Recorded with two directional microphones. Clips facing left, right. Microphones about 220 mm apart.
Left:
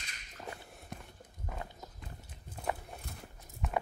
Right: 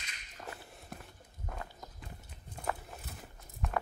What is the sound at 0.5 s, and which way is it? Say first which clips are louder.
Walk: left 1 dB; 5° right (ahead or behind).